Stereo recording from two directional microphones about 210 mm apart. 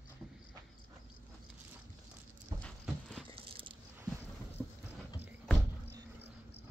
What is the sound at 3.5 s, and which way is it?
Biting, 25° right (ahead or behind).